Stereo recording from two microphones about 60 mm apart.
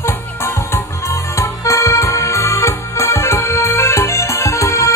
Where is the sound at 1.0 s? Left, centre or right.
Left.